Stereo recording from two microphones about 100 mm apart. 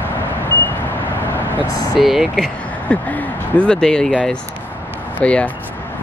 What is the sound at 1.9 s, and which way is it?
Speech, centre (ahead or behind).